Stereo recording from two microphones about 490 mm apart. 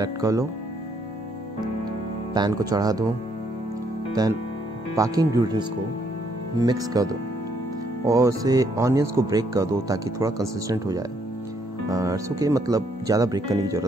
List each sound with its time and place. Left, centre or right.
0.0 s speech: centre
2.3 s speech: centre
4.1 s speech: centre